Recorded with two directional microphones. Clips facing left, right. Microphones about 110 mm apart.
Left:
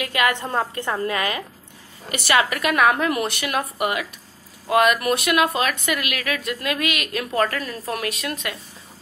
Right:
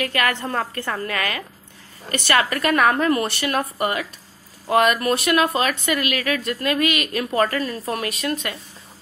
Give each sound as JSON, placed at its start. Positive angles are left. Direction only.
{"t": 0.0, "sound": "a woman's voice", "side_deg": 15}
{"t": 2.0, "sound": "a woman's voice", "side_deg": 10}